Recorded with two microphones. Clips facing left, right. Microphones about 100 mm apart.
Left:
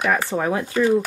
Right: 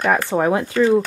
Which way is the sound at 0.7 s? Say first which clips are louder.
Right 1 dB; 15° left (ahead or behind).